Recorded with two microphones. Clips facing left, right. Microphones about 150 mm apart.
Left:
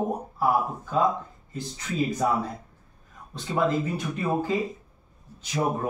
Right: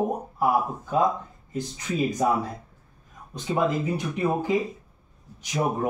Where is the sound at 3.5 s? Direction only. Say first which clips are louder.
Even; 15° right (ahead or behind).